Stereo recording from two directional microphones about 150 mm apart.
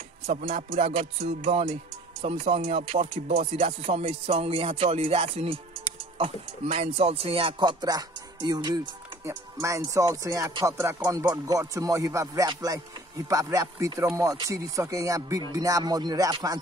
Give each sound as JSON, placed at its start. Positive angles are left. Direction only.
{"t": 0.3, "sound": "music", "side_deg": -45}
{"t": 8.5, "sound": "speech", "side_deg": -25}